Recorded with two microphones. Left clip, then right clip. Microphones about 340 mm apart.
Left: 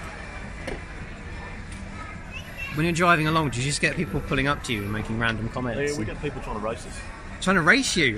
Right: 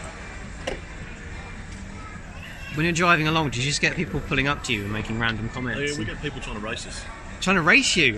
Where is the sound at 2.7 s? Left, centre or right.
Centre.